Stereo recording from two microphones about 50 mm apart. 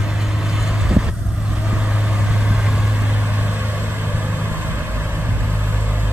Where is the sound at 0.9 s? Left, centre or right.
Centre.